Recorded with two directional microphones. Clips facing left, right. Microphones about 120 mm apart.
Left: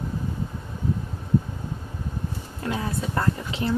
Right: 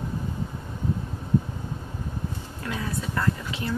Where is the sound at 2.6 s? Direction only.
30° left (ahead or behind).